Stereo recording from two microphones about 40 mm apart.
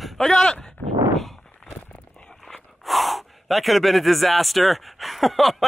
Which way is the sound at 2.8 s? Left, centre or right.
Centre.